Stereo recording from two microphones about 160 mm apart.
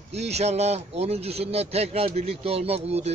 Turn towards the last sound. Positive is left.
turn(degrees=-40)  # may be behind; listen again after turning